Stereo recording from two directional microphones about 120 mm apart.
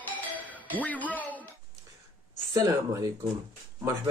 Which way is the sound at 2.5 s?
30° right (ahead or behind).